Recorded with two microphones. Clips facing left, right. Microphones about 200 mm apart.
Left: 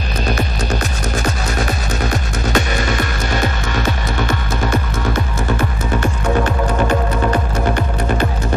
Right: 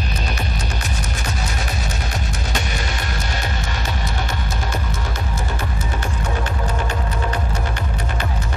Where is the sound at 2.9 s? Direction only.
90° left; by 7.3 s 60° left (ahead or behind).